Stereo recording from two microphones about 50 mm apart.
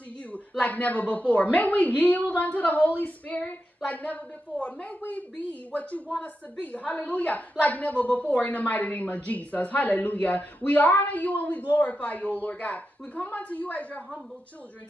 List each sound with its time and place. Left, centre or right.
0.3 s a woman's voice: left